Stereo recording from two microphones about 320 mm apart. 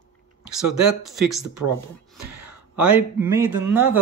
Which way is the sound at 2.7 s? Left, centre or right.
Centre.